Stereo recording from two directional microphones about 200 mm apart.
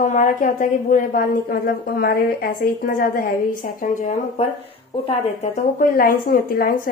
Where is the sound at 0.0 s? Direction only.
40° left (ahead or behind).